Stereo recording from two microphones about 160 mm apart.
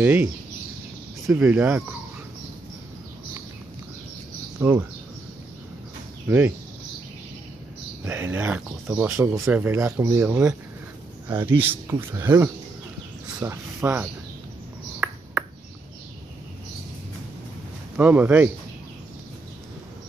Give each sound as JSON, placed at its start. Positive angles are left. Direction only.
{"t": 0.0, "sound": "speech", "side_deg": -10}
{"t": 4.6, "sound": "speech", "side_deg": -15}
{"t": 6.2, "sound": "speech", "side_deg": -10}
{"t": 8.0, "sound": "speech", "side_deg": -15}
{"t": 10.2, "sound": "speech", "side_deg": -5}
{"t": 15.0, "sound": "a sound", "side_deg": -10}
{"t": 17.9, "sound": "speech", "side_deg": -10}